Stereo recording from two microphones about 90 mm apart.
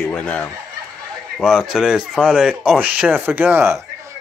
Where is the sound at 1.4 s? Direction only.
5° right (ahead or behind); by 3.8 s 25° right (ahead or behind).